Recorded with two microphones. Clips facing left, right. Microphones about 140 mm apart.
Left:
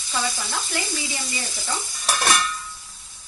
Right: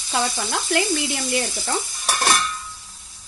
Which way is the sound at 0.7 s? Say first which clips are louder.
Right 11 dB; 70° right (ahead or behind).